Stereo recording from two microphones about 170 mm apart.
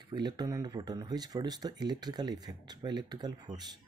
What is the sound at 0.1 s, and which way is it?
Speech, 25° right (ahead or behind).